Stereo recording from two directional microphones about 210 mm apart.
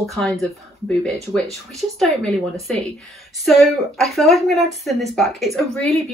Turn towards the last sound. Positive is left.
turn(degrees=0)  # may be behind; listen again after turning